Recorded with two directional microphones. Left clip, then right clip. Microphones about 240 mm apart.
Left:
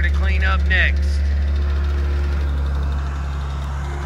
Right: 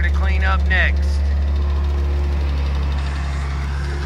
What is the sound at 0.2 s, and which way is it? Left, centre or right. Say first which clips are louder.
Vehicle: even; centre.